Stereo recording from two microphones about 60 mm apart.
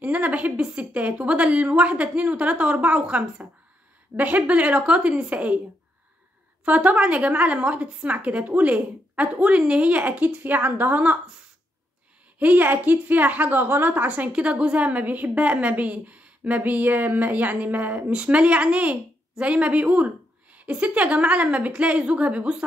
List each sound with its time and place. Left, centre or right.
0.0 s a woman's voice: right
6.6 s a woman's voice: right
12.4 s a woman's voice: right
18.1 s a woman's voice: centre